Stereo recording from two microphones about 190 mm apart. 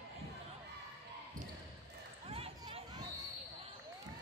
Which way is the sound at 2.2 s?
30° right (ahead or behind).